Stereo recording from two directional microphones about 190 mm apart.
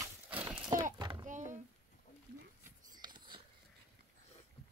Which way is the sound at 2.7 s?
20° right (ahead or behind).